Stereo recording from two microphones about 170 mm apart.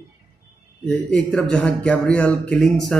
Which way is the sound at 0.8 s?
5° left (ahead or behind).